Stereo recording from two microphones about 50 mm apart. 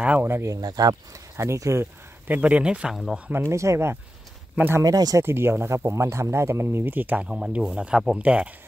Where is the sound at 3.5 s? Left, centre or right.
Right.